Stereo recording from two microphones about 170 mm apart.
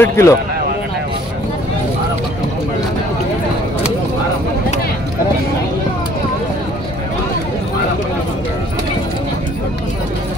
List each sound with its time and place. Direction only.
0.0 s speech: 15° left (ahead or behind)